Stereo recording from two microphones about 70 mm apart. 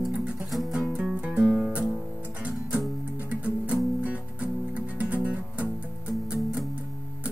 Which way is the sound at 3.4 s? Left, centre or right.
Centre.